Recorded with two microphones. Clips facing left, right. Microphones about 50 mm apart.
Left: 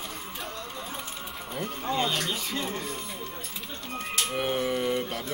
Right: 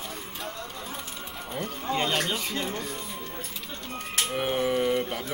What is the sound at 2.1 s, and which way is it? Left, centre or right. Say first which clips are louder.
Speech: right 2 dB; right.